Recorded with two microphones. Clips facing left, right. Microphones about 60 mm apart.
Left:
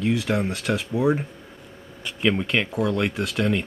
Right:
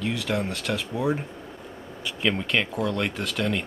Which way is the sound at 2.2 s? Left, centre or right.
Centre.